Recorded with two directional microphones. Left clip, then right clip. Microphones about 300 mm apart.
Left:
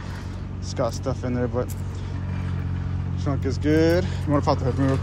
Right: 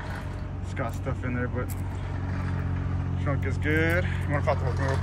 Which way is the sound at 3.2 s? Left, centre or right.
Centre.